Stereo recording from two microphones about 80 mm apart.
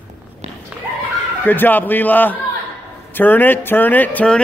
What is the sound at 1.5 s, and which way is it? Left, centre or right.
A man's voice, left.